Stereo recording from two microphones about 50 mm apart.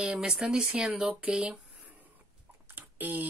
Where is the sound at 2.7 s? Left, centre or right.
Right.